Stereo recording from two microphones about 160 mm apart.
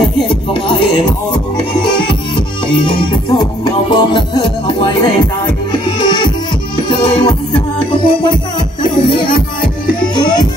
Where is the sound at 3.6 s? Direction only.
30° left (ahead or behind).